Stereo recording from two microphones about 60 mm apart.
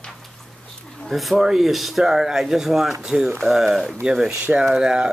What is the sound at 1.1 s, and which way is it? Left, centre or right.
Speech, centre.